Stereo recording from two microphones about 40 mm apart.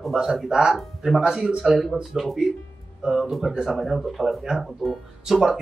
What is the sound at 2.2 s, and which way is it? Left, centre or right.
Speech, centre.